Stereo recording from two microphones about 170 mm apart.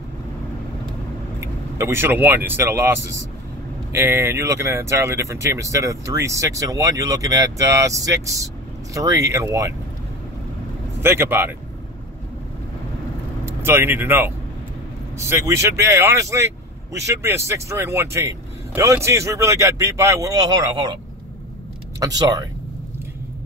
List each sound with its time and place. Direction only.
1.4 s speech: 15° right (ahead or behind)
3.9 s speech: 15° right (ahead or behind)
11.0 s speech: 15° right (ahead or behind)
13.5 s speech: 15° right (ahead or behind)
22.0 s speech: 25° right (ahead or behind)